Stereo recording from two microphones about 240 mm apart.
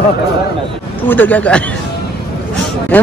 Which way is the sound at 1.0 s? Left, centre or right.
Centre.